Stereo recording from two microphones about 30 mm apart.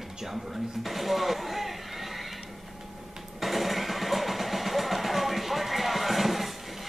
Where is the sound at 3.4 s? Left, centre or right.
Centre.